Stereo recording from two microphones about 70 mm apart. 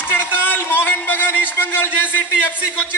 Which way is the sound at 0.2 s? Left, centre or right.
Left.